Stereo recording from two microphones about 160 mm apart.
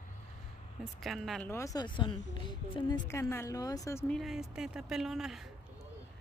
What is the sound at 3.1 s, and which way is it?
Speech, 15° left (ahead or behind).